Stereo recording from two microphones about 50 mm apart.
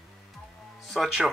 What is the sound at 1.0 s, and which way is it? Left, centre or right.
Speech, centre.